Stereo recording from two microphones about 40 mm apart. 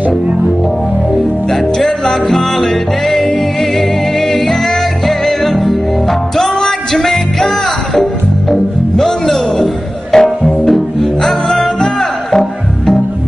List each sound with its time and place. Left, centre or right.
1.5 s music: centre